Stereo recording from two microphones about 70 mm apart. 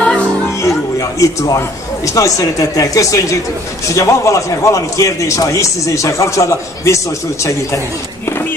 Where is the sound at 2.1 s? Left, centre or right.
Left.